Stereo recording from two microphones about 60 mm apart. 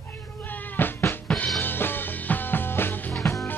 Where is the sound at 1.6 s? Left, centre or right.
Left.